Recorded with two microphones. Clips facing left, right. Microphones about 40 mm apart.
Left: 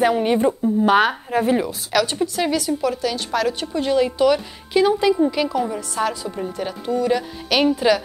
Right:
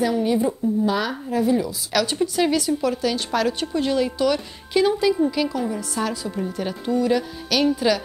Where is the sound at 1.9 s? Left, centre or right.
Centre.